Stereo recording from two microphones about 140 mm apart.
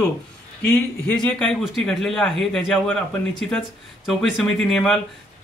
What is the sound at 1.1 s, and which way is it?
A man's voice, 5° left (ahead or behind).